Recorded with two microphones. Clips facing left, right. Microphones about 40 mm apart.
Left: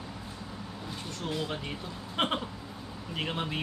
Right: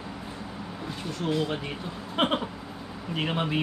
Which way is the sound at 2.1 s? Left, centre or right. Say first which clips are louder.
Right 4 dB; centre.